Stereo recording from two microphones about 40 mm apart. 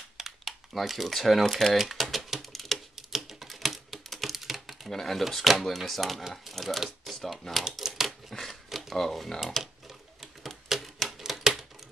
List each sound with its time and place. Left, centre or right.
0.2 s crumpling: centre
1.4 s speech: centre
1.8 s typing: centre
5.8 s speech: centre
7.8 s a sound: centre
8.3 s a sound: centre
8.9 s speech: centre
10.2 s typewriter: centre
11.1 s a sound: centre